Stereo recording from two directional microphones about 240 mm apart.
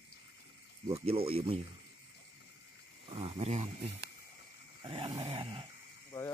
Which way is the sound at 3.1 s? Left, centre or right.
Right.